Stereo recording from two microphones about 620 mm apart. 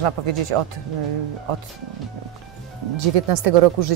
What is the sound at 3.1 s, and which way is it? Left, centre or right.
Speech, right.